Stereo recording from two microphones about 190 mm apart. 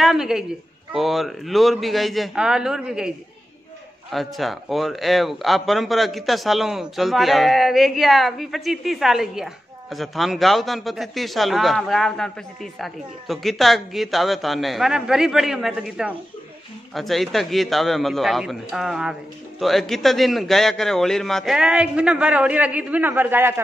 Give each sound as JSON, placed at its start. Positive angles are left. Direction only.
{"t": 0.0, "sound": "a man's voice", "side_deg": 0}
{"t": 4.1, "sound": "a man's voice", "side_deg": 0}